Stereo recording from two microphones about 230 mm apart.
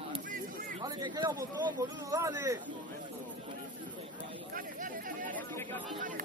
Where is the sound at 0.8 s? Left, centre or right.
Centre.